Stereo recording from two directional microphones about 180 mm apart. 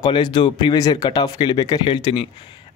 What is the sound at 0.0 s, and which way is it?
Speech, 25° left (ahead or behind).